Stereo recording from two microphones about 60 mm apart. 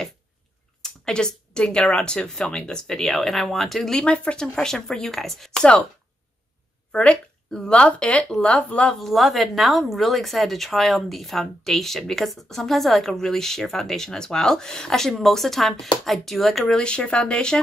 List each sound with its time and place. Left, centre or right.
0.8 s speech: centre
4.0 s speech: centre
6.9 s speech: centre
8.9 s speech: centre
16.8 s speech: centre